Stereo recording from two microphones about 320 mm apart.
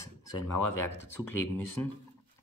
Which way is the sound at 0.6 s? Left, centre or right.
Left.